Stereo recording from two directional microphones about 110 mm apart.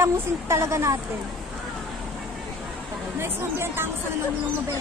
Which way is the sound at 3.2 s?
20° right (ahead or behind).